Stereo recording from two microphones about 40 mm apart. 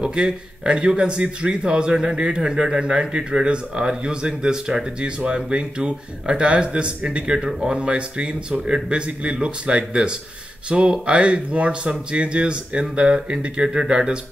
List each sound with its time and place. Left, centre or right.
0.0 s a man's voice: right